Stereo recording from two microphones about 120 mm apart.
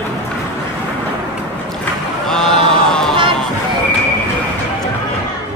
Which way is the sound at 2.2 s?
5° left (ahead or behind).